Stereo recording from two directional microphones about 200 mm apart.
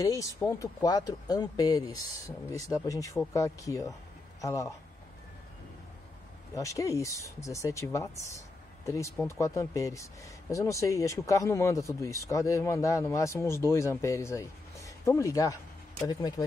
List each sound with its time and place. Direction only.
0.0 s speech: 15° left (ahead or behind)
6.5 s speech: 15° left (ahead or behind)